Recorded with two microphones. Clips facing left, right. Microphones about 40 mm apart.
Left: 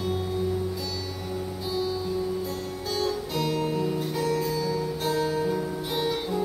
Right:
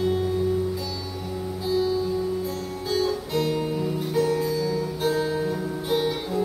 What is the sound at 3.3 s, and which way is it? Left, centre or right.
Guitar, centre.